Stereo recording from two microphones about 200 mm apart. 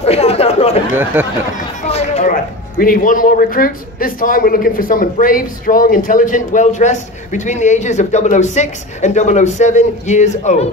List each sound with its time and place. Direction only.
0.0 s chatter: 30° left (ahead or behind)
1.1 s speech: 10° right (ahead or behind)
1.8 s a man's voice: 35° left (ahead or behind)